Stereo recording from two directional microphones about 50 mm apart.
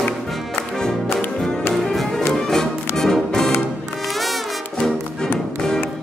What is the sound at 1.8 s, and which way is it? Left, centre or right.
Music, centre.